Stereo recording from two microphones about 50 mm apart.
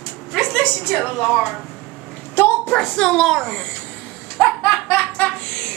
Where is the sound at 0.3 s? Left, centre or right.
Centre.